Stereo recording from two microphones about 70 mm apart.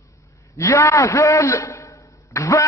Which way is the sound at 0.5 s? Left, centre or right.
Left.